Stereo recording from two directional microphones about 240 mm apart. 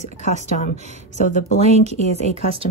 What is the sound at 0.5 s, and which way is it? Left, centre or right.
Speech, left.